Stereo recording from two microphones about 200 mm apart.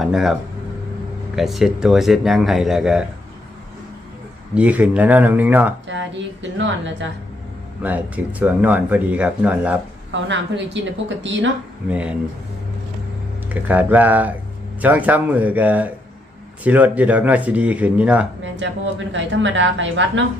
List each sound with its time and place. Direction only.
0.0 s speech: centre (ahead or behind)
4.6 s speech: 5° right (ahead or behind)
5.9 s speech: 65° right (ahead or behind)
7.8 s speech: 5° right (ahead or behind)
10.2 s a woman's voice: 65° right (ahead or behind)
11.9 s speech: 5° right (ahead or behind)
13.5 s speech: 10° right (ahead or behind)
18.6 s speech: 65° right (ahead or behind)